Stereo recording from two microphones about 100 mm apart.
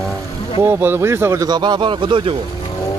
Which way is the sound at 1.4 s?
45° right (ahead or behind).